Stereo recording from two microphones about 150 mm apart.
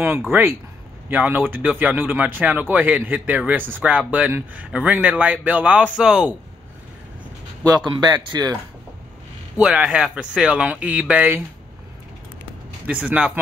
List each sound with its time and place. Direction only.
0.3 s speech: 15° right (ahead or behind)
7.6 s a man's voice: 25° right (ahead or behind)
9.6 s speech: 5° right (ahead or behind)
12.8 s speech: 5° right (ahead or behind)